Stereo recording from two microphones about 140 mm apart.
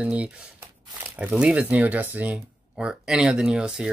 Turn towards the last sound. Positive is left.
turn(degrees=-5)  # may be behind; listen again after turning